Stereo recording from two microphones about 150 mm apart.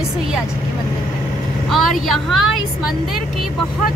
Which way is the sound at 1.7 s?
Centre (ahead or behind).